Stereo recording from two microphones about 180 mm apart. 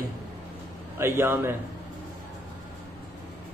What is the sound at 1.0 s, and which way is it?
Speech, 15° right (ahead or behind).